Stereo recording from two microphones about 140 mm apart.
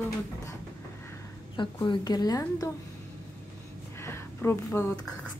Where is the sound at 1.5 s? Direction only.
35° left (ahead or behind).